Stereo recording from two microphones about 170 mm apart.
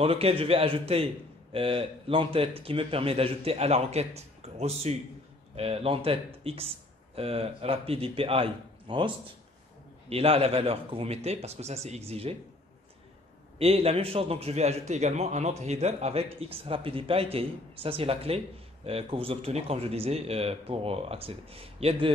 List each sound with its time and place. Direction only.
0.0 s a man's voice: 35° right (ahead or behind)
13.6 s a man's voice: 35° right (ahead or behind)